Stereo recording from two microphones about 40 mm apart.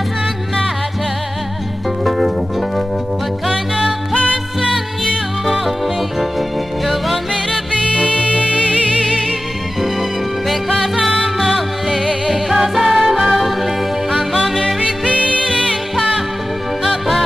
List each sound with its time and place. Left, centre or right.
2.0 s music: centre
6.9 s music: centre
7.9 s music: centre
8.4 s music: right
10.5 s music: centre
14.4 s music: centre
15.0 s music: right
16.8 s music: centre